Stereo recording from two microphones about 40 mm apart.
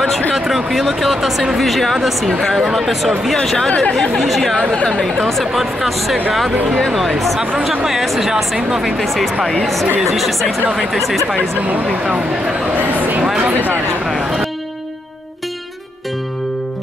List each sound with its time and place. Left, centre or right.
0.4 s speech: centre
3.5 s speech: left
4.1 s speech: centre
7.3 s speech: centre
8.0 s speech: centre
8.5 s speech: centre
8.8 s speech: centre
12.0 s speech: right
12.7 s speech: right
13.2 s speech: centre
14.0 s speech: centre